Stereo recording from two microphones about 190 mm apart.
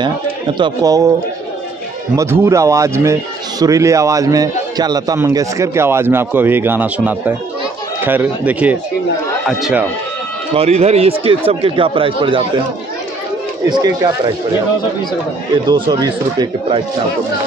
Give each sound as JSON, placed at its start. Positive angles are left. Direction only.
{"t": 0.6, "sound": "speech", "side_deg": -20}
{"t": 2.1, "sound": "a man's voice", "side_deg": -15}
{"t": 10.5, "sound": "speech", "side_deg": -30}
{"t": 13.7, "sound": "speech", "side_deg": -20}
{"t": 15.7, "sound": "speech", "side_deg": -20}